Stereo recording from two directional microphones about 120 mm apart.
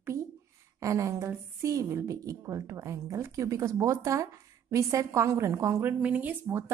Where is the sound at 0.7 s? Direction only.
25° right (ahead or behind).